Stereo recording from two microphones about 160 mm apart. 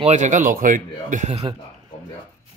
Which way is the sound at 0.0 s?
50° right (ahead or behind).